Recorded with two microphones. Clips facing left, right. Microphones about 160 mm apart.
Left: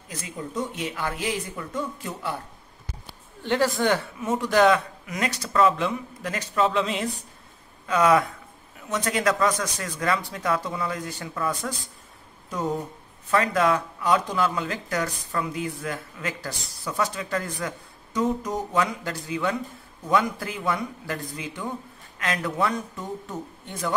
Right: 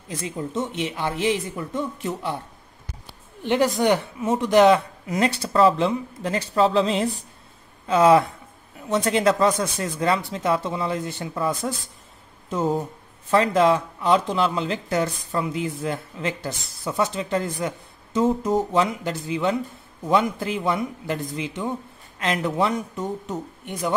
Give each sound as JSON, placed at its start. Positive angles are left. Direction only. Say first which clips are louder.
{"t": 0.1, "sound": "speech", "louder": "right 5 dB", "side_deg": -25}
{"t": 3.4, "sound": "speech", "louder": "right 3 dB", "side_deg": -20}